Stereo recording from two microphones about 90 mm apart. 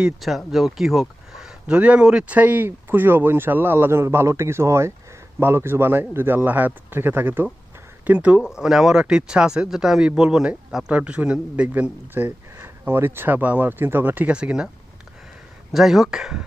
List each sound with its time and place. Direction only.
0.0 s speech: centre (ahead or behind); by 14.3 s 20° right (ahead or behind)
14.3 s speech: 10° right (ahead or behind)
15.7 s speech: centre (ahead or behind)